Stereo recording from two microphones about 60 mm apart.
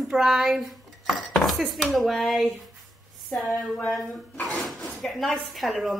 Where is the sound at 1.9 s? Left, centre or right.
Centre.